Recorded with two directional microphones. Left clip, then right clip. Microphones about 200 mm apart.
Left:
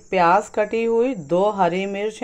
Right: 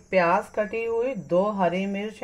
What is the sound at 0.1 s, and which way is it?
A woman's voice, 35° left (ahead or behind).